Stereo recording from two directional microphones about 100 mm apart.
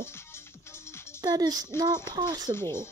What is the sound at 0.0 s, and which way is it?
Music, 25° left (ahead or behind).